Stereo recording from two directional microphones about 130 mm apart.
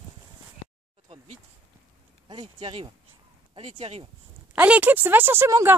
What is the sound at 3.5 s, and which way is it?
Speech, 50° right (ahead or behind).